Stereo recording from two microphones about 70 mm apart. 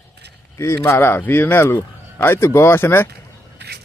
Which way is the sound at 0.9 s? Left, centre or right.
Left.